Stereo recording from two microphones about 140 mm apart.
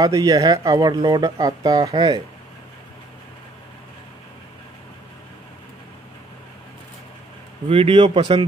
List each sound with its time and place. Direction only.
0.0 s speech: 25° right (ahead or behind)
7.6 s speech: 45° right (ahead or behind)